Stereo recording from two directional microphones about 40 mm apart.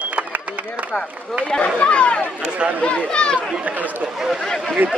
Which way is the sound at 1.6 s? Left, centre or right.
Left.